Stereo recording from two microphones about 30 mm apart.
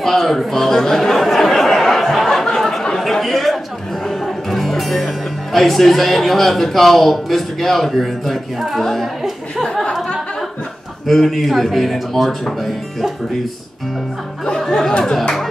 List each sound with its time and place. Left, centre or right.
0.0 s a sound: centre
4.1 s speech: centre
11.1 s speech: centre
14.7 s speech: left